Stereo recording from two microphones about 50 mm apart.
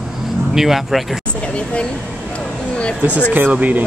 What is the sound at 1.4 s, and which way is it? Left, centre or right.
Speech, left.